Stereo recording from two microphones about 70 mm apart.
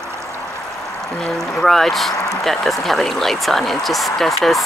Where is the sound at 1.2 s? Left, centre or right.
Centre.